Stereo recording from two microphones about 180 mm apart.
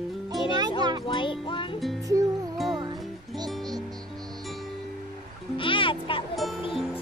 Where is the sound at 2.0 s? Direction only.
20° right (ahead or behind).